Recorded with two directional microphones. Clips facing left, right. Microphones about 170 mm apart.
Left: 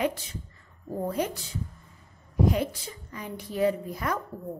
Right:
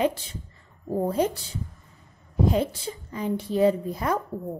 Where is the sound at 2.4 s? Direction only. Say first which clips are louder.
Right 2 dB; 30° right (ahead or behind).